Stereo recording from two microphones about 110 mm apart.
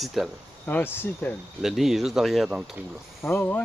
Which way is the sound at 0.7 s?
15° left (ahead or behind).